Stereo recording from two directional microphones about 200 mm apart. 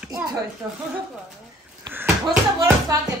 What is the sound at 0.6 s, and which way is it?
Speech, 5° right (ahead or behind).